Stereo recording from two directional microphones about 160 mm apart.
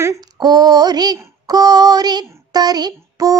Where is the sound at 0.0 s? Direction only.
20° right (ahead or behind).